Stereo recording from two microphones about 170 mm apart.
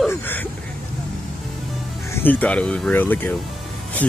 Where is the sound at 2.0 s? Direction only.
15° left (ahead or behind).